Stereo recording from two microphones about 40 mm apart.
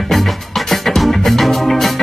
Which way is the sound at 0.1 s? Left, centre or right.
Centre.